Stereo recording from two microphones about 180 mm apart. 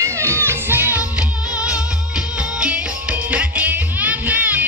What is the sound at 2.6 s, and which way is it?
Music, 5° right (ahead or behind).